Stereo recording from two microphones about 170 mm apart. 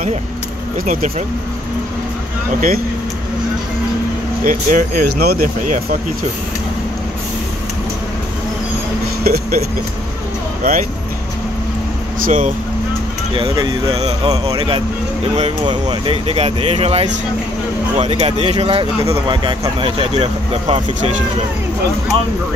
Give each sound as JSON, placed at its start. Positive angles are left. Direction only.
{"t": 4.5, "sound": "speech", "side_deg": -50}
{"t": 9.2, "sound": "speech", "side_deg": -65}
{"t": 12.3, "sound": "speech", "side_deg": -50}
{"t": 13.4, "sound": "speech", "side_deg": -30}